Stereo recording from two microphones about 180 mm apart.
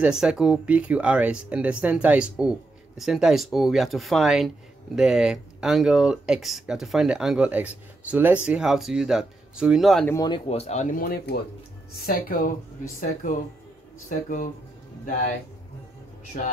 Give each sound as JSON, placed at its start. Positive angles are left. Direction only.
{"t": 0.0, "sound": "speech", "side_deg": -5}
{"t": 10.0, "sound": "speech", "side_deg": 20}
{"t": 16.3, "sound": "speech", "side_deg": 55}